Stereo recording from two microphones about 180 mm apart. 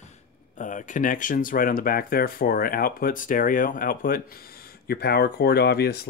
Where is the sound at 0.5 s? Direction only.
45° left (ahead or behind).